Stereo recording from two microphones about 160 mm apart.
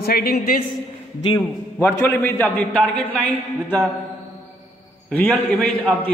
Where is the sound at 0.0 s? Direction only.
70° left (ahead or behind).